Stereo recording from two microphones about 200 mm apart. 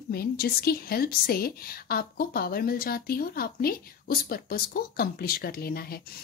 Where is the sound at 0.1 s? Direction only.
50° left (ahead or behind).